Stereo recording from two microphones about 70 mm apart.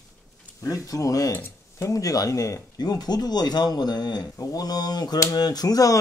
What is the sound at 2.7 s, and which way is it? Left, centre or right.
Speech, left.